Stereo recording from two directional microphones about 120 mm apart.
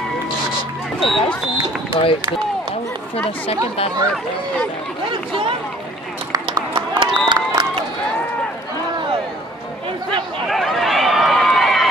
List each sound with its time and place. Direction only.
0.9 s speech: centre (ahead or behind)
2.0 s speech: 45° left (ahead or behind)
6.3 s run: 40° right (ahead or behind)
10.5 s run: centre (ahead or behind)